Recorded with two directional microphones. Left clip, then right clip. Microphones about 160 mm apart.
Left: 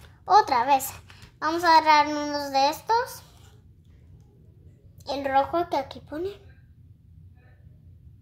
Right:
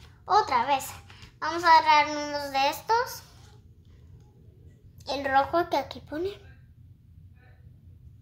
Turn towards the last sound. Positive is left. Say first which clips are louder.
# even
turn(degrees=0)  # may be behind; listen again after turning